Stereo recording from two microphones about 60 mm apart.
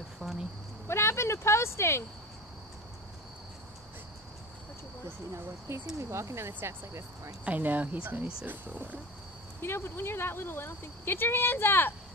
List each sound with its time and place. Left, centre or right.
0.2 s a sound: centre
0.8 s speech: left
5.9 s speech: right
7.4 s speech: right
9.6 s speech: left